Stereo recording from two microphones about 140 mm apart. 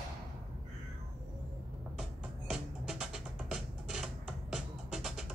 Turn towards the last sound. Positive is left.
turn(degrees=0)  # may be behind; listen again after turning